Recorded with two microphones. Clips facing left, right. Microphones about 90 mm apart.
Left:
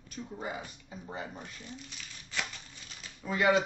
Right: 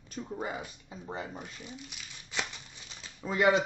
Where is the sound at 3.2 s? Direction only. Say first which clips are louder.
Right 1 dB; 30° right (ahead or behind).